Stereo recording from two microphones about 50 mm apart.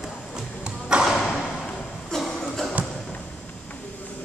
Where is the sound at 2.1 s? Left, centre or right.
Centre.